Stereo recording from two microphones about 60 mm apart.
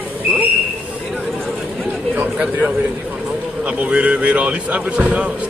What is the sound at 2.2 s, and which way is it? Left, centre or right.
A man's voice, right.